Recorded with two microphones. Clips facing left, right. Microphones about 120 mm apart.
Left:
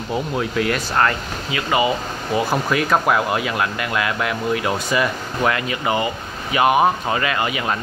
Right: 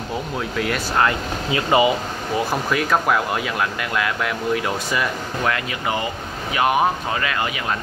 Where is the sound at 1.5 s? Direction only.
25° right (ahead or behind).